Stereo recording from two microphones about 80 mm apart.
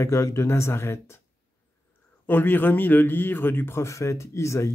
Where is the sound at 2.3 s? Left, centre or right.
Left.